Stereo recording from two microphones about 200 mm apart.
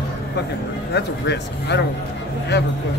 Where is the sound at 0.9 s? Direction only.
60° left (ahead or behind).